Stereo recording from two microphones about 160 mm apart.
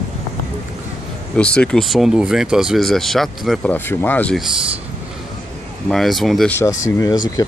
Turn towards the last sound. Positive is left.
turn(degrees=25)  # may be behind; listen again after turning